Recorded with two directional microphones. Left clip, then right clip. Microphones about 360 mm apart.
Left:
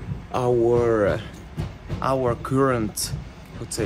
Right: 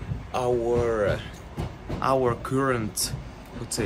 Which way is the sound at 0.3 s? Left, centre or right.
Centre.